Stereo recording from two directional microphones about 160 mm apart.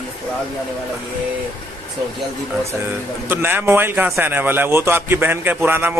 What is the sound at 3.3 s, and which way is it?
A man's voice, 15° right (ahead or behind).